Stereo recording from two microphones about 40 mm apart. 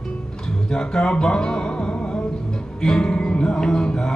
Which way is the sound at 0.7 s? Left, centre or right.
Left.